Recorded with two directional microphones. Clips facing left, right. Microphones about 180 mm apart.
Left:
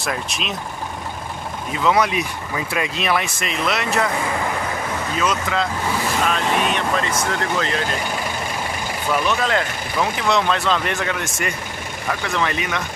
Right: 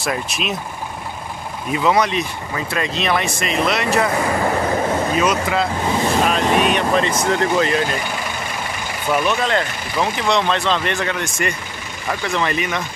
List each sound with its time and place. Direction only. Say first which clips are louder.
0.0 s speech: right 3 dB; 5° right (ahead or behind)
1.9 s speech: right 1 dB; 5° left (ahead or behind)
5.2 s speech: right 3 dB; 10° right (ahead or behind)
5.9 s speech: right 4 dB; 20° right (ahead or behind)
9.1 s speech: right 2 dB; centre (ahead or behind)